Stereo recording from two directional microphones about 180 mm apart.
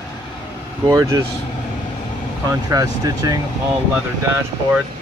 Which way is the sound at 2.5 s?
20° right (ahead or behind).